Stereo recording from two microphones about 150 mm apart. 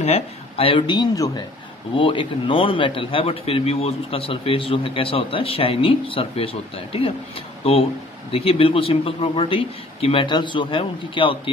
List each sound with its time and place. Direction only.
0.0 s speech: 40° left (ahead or behind)